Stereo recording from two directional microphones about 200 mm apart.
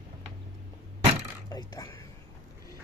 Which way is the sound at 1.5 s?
20° left (ahead or behind).